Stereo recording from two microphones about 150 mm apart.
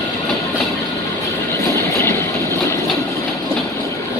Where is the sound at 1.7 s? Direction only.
20° left (ahead or behind).